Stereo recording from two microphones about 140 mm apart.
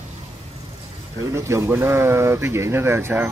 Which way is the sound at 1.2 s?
20° right (ahead or behind).